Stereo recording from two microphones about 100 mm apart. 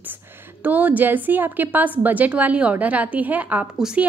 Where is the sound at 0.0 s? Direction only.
20° right (ahead or behind).